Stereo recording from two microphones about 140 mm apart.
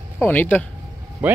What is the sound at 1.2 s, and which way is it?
Speech, 10° right (ahead or behind).